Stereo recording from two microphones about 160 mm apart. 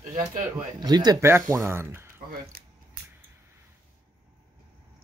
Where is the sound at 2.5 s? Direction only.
65° right (ahead or behind).